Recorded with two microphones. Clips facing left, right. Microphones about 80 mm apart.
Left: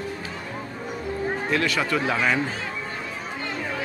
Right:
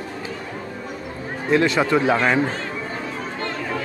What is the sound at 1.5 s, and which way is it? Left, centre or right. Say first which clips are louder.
Speech: right 8 dB; right.